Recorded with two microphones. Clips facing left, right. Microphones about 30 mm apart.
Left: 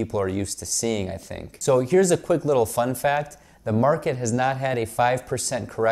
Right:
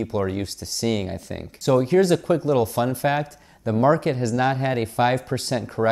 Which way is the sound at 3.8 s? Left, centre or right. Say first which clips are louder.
Right 2 dB; right.